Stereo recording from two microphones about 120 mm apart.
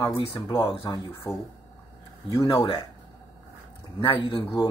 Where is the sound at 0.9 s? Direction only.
35° left (ahead or behind).